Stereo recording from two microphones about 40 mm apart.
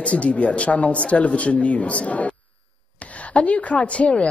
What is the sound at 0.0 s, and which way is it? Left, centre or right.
Speech, left.